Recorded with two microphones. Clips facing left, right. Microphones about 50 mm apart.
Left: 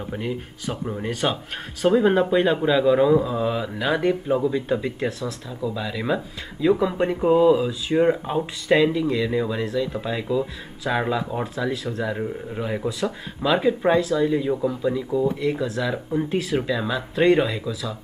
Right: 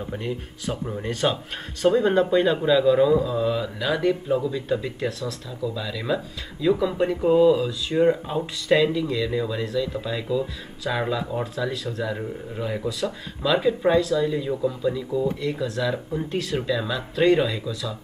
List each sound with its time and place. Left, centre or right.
0.1 s speech: centre
15.2 s speech: centre